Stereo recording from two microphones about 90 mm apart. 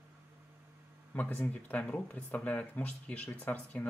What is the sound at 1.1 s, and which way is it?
Speech, 15° left (ahead or behind).